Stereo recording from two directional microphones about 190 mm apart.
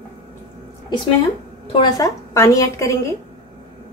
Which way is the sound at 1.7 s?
20° left (ahead or behind).